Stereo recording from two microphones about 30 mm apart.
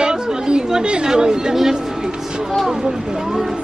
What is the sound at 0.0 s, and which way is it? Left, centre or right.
Chatter, right.